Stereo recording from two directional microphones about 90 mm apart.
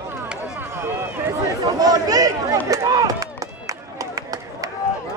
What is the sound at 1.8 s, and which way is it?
Speech, 40° right (ahead or behind).